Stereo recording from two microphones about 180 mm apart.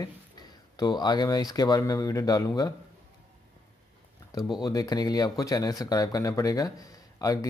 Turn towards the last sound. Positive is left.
turn(degrees=20)  # may be behind; listen again after turning